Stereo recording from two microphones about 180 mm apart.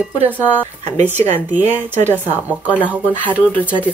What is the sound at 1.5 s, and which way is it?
Speech, 10° right (ahead or behind).